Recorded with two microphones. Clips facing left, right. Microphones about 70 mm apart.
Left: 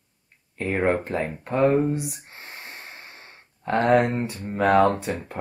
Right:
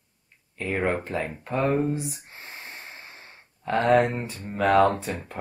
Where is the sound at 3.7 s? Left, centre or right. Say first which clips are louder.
Left 1 dB; centre.